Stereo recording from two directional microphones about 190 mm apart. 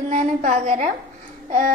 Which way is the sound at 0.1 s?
40° right (ahead or behind).